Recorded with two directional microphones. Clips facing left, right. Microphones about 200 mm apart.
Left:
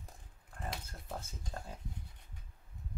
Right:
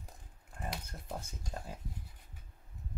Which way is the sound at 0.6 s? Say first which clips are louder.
Right 1 dB; 20° right (ahead or behind).